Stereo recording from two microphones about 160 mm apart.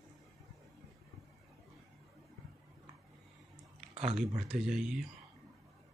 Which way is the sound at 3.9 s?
40° right (ahead or behind).